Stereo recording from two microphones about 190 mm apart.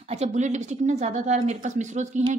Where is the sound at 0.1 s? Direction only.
35° right (ahead or behind).